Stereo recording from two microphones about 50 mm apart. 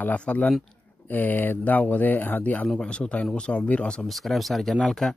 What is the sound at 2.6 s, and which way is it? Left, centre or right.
Speech, centre.